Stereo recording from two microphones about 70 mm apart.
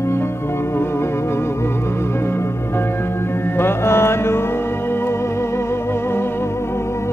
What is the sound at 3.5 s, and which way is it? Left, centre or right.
Music, left.